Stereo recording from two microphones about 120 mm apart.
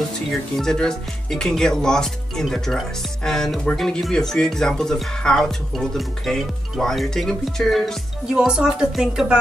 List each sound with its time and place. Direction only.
0.3 s speech: 5° left (ahead or behind)